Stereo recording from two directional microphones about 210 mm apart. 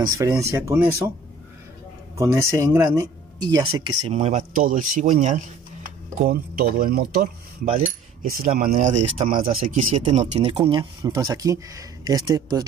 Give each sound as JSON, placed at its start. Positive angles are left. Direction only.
{"t": 0.0, "sound": "speech", "side_deg": -15}
{"t": 2.1, "sound": "speech", "side_deg": -15}
{"t": 4.1, "sound": "speech", "side_deg": -35}
{"t": 6.2, "sound": "speech", "side_deg": -45}